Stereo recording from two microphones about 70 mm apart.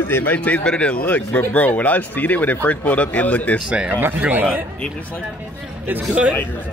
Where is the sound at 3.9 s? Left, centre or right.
Right.